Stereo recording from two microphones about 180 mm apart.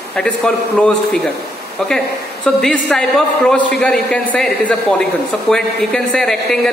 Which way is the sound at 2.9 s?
5° left (ahead or behind).